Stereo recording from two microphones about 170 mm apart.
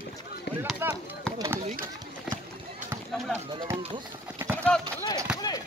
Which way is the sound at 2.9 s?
15° right (ahead or behind).